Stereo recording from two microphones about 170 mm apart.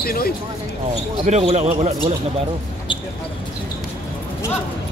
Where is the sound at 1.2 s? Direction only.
40° right (ahead or behind).